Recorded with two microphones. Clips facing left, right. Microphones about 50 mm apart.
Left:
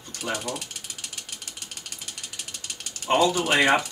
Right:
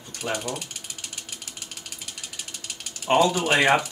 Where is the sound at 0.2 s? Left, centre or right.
Centre.